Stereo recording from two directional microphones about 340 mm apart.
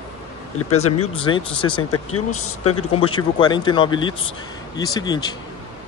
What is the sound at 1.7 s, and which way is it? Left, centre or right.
Speech, left.